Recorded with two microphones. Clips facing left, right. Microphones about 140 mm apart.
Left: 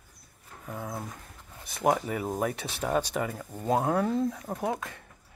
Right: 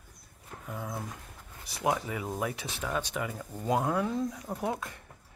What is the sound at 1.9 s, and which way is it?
Speech, 40° left (ahead or behind).